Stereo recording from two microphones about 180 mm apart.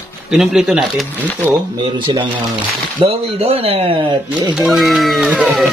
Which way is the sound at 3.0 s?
35° right (ahead or behind).